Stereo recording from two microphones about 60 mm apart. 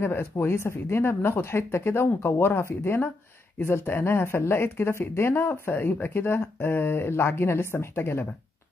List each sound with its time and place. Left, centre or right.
0.0 s speech: left